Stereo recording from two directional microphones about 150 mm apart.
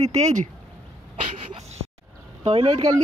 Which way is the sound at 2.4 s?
45° right (ahead or behind).